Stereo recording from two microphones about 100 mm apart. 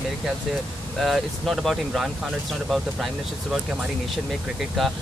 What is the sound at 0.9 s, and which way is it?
Speech, centre (ahead or behind).